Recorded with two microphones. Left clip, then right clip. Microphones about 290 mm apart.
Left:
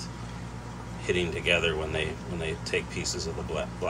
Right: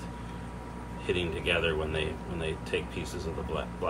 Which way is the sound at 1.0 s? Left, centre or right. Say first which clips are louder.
Left 3 dB; centre.